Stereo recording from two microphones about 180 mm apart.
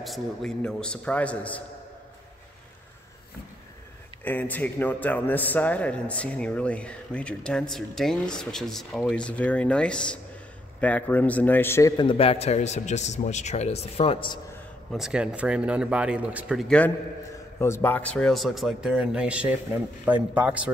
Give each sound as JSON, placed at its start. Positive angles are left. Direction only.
{"t": 0.0, "sound": "speech", "side_deg": 0}
{"t": 4.2, "sound": "a man's voice", "side_deg": 10}
{"t": 12.0, "sound": "a man's voice", "side_deg": 30}
{"t": 14.9, "sound": "speech", "side_deg": 0}